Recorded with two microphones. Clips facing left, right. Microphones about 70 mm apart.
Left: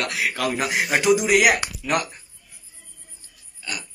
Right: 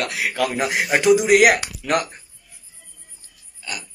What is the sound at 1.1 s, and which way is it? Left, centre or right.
Speech, right.